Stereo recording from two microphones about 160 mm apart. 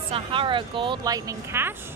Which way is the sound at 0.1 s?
30° right (ahead or behind).